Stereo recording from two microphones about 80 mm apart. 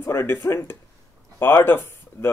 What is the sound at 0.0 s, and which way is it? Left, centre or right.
Speech, left.